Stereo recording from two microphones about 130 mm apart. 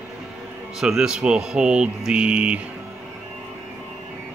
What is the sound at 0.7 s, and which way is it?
Speech, 5° right (ahead or behind).